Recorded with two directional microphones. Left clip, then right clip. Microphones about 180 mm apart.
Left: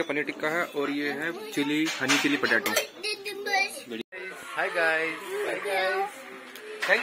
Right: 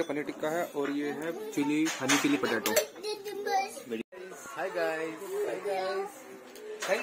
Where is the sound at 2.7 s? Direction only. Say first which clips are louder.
Left 1 dB; 35° right (ahead or behind).